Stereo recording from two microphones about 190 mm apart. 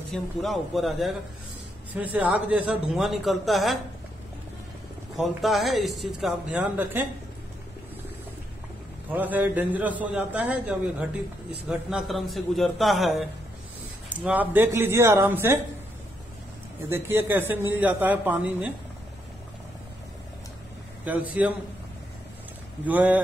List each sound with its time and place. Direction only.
0.1 s a man's voice: centre (ahead or behind)
5.1 s speech: centre (ahead or behind)
9.1 s a man's voice: 10° right (ahead or behind)
16.9 s a man's voice: 10° right (ahead or behind)
21.0 s a man's voice: 10° right (ahead or behind)
22.8 s a man's voice: 10° right (ahead or behind)